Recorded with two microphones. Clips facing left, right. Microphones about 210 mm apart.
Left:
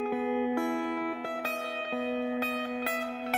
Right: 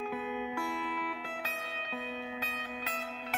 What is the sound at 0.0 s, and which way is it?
Music, 50° left (ahead or behind).